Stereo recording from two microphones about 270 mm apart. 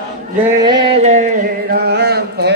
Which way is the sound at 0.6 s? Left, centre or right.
Right.